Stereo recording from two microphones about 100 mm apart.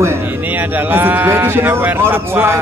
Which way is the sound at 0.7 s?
20° right (ahead or behind).